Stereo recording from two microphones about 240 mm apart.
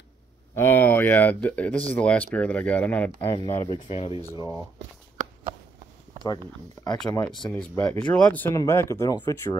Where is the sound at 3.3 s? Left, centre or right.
Centre.